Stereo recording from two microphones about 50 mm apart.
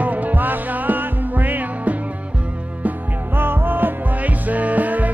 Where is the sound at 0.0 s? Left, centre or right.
Right.